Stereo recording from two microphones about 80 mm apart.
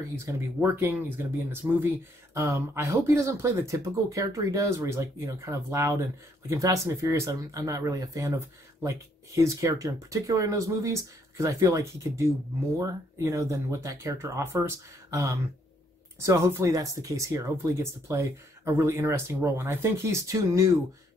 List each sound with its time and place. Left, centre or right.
0.1 s speech: right